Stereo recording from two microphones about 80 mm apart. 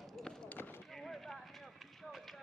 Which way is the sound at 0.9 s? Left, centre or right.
Centre.